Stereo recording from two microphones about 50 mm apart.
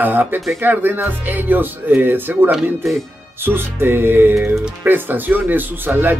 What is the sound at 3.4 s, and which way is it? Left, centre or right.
Speech, right.